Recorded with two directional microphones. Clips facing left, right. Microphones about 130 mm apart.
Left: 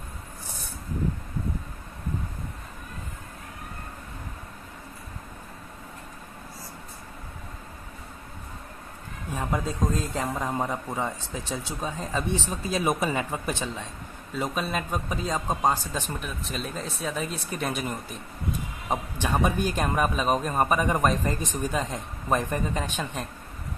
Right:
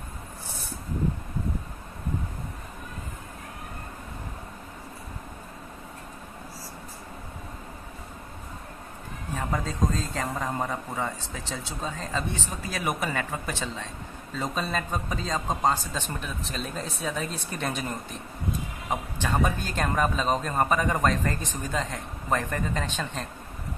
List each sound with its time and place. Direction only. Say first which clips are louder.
9.3 s a man's voice: left 1 dB; 15° left (ahead or behind)